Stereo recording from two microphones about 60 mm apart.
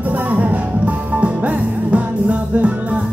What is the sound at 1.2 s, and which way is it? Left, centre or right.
Music, right.